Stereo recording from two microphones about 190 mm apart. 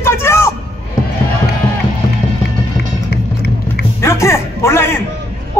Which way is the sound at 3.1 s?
55° left (ahead or behind).